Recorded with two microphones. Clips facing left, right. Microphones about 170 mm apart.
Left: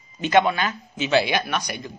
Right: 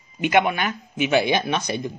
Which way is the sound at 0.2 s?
15° right (ahead or behind).